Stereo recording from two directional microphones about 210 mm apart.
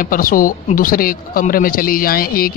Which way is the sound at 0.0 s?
40° left (ahead or behind).